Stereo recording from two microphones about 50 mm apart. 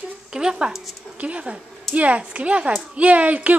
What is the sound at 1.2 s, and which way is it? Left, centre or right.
A woman's voice, right.